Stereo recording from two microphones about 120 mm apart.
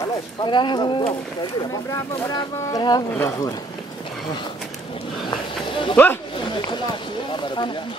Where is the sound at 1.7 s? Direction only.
25° left (ahead or behind).